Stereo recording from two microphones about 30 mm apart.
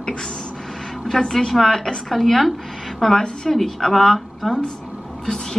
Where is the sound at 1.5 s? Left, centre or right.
Centre.